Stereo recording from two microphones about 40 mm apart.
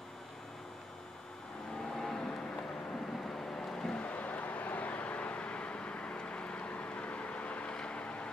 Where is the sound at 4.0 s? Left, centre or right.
Left.